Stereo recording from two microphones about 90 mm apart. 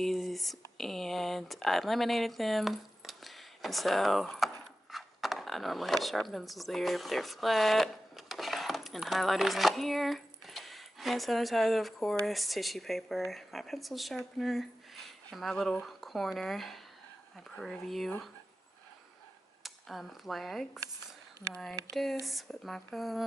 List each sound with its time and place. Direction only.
0.0 s speech: centre (ahead or behind)
19.6 s speech: centre (ahead or behind)
22.2 s speech: centre (ahead or behind)